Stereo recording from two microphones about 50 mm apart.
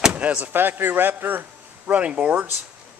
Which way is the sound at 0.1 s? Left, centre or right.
Right.